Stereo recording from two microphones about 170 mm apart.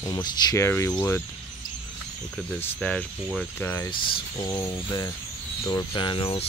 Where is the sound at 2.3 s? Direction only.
5° left (ahead or behind).